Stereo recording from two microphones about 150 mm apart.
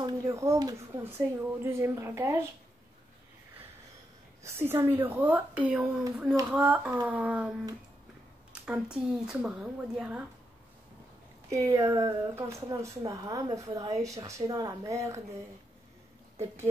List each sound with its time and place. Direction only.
0.0 s speech: 20° right (ahead or behind)
4.4 s speech: 15° right (ahead or behind)
8.9 s a woman's voice: 5° right (ahead or behind)
11.5 s speech: 20° right (ahead or behind)